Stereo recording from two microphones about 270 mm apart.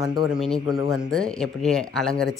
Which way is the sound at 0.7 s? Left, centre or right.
Centre.